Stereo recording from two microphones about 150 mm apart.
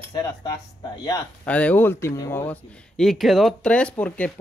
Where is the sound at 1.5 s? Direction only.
10° left (ahead or behind).